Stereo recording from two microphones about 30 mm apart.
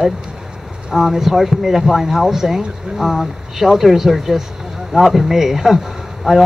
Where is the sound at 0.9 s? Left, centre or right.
Centre.